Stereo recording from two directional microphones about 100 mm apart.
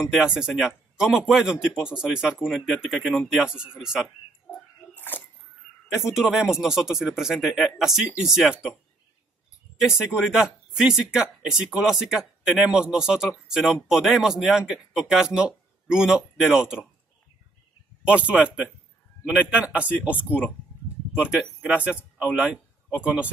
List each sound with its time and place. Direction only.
0.1 s a man's voice: 5° right (ahead or behind)
4.9 s dog: 20° left (ahead or behind)
5.9 s a man's voice: 5° right (ahead or behind)
9.8 s speech: 5° right (ahead or behind)
18.0 s a man's voice: 10° right (ahead or behind)